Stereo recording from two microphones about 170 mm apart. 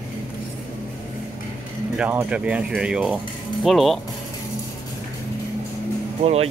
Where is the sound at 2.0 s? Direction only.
5° right (ahead or behind).